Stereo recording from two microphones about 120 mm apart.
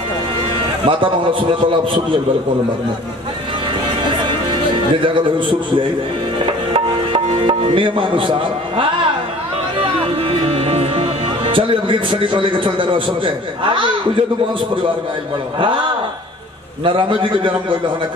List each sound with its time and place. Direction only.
0.8 s speech: 45° right (ahead or behind)
5.0 s speech: 45° right (ahead or behind)
6.4 s music: 50° right (ahead or behind)
7.4 s speech: 45° right (ahead or behind)
10.5 s speech: 55° right (ahead or behind)
16.8 s speech: 45° right (ahead or behind)